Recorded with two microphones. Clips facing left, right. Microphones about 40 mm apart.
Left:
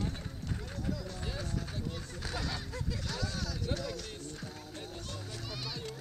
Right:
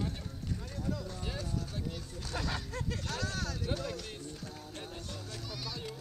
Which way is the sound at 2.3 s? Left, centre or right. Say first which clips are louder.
Right 3 dB; right.